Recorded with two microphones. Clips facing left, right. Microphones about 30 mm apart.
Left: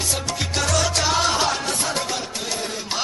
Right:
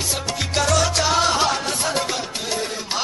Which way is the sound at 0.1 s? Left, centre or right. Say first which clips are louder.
Right 1 dB; centre.